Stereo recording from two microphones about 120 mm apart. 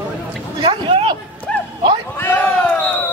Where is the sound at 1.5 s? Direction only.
5° left (ahead or behind).